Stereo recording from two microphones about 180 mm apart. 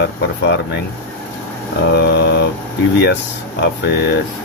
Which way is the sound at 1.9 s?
70° left (ahead or behind).